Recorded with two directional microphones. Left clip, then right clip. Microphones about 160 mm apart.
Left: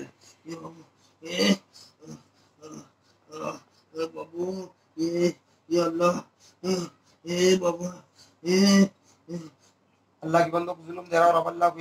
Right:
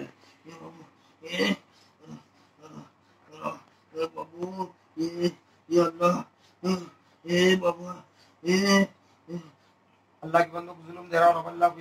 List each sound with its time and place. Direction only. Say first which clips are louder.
1.2 s a man's voice: left 3 dB; 55° left (ahead or behind)
2.6 s a sound: left 3 dB; 55° left (ahead or behind)
7.3 s speech: even; 55° left (ahead or behind)
10.2 s a man's voice: left 2 dB; 65° left (ahead or behind)